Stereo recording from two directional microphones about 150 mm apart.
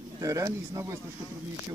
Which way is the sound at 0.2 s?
20° right (ahead or behind).